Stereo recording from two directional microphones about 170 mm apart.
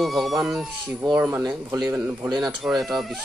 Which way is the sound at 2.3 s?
Centre (ahead or behind).